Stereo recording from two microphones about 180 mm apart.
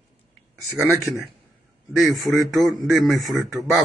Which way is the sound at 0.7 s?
15° right (ahead or behind).